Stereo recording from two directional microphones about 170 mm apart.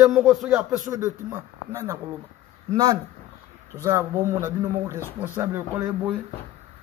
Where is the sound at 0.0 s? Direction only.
Centre (ahead or behind).